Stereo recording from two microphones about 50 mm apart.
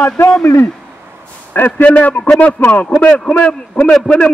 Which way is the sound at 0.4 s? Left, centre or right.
Left.